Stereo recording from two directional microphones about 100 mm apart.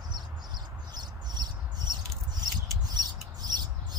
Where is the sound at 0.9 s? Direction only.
45° right (ahead or behind).